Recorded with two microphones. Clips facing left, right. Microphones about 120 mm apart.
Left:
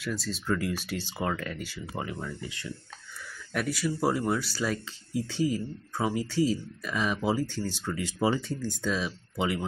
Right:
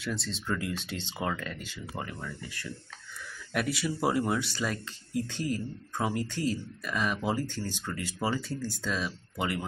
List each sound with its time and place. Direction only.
0.0 s speech: 25° right (ahead or behind)
0.3 s speech: 5° left (ahead or behind)
0.8 s speech: 25° right (ahead or behind)
1.2 s speech: 5° left (ahead or behind)
3.5 s speech: centre (ahead or behind)
5.3 s speech: 55° right (ahead or behind)
5.9 s speech: 5° left (ahead or behind)
8.4 s speech: 10° right (ahead or behind)
8.8 s speech: 15° left (ahead or behind)